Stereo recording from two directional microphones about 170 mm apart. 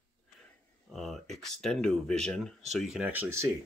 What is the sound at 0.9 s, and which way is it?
Speech, centre (ahead or behind).